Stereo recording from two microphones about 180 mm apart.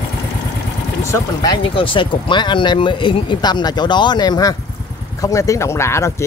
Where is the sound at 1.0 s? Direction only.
20° left (ahead or behind).